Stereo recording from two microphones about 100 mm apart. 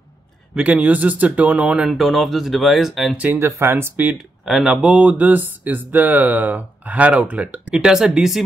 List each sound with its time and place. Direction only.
0.6 s speech: 15° right (ahead or behind)
1.9 s speech: centre (ahead or behind)
3.3 s speech: 25° right (ahead or behind)
4.5 s speech: centre (ahead or behind)
4.8 s speech: 15° right (ahead or behind)